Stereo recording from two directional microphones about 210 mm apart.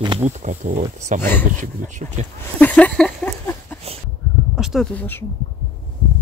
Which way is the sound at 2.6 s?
5° left (ahead or behind).